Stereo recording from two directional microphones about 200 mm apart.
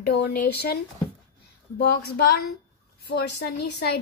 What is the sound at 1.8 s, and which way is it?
A woman's voice, 55° left (ahead or behind).